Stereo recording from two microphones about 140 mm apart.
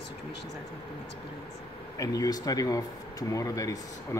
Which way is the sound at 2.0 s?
25° left (ahead or behind).